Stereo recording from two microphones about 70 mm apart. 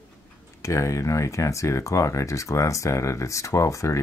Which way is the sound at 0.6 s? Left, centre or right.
Left.